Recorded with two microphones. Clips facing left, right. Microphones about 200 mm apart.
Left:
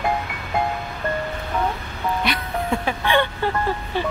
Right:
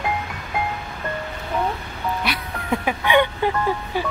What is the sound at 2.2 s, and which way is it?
Music, 10° right (ahead or behind).